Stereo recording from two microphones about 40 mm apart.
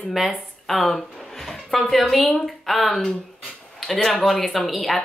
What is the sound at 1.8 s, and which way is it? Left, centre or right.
Speech, centre.